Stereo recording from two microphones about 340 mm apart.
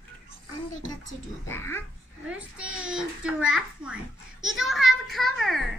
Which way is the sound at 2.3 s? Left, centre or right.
Centre.